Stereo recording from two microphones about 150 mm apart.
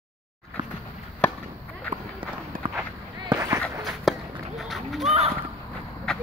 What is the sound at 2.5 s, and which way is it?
Run, 70° right (ahead or behind).